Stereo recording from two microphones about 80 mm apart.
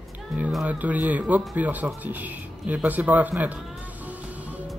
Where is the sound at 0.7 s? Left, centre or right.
Centre.